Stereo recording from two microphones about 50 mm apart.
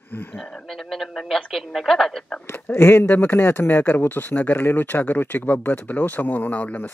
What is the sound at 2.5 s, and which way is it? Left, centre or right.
Speech, left.